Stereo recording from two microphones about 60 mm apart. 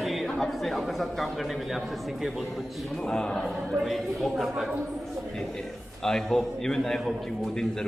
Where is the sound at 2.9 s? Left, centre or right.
Centre.